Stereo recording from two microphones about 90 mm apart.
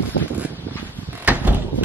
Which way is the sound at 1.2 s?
15° right (ahead or behind).